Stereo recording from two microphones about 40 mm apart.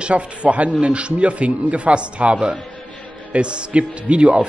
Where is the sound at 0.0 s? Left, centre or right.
Right.